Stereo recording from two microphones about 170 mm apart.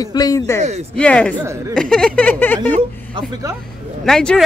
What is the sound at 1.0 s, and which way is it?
Speech, 5° left (ahead or behind).